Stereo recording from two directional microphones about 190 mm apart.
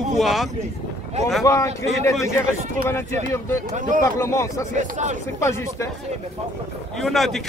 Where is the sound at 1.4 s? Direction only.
15° left (ahead or behind).